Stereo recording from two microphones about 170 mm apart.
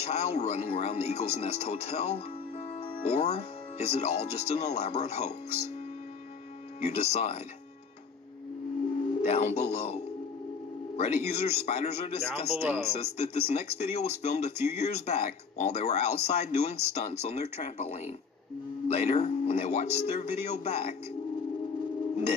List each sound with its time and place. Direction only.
0.0 s speech: 40° left (ahead or behind)
6.8 s speech: 40° left (ahead or behind)
9.2 s speech: 40° left (ahead or behind)
11.0 s speech: 40° left (ahead or behind)
12.4 s speech: 10° right (ahead or behind)
12.9 s speech: 40° left (ahead or behind)